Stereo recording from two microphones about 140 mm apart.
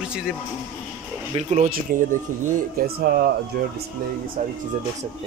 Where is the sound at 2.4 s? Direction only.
90° right.